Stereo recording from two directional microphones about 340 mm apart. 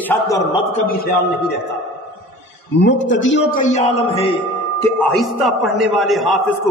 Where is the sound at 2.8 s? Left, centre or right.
Left.